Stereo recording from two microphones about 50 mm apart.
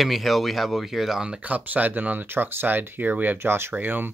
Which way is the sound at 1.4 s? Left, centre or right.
Right.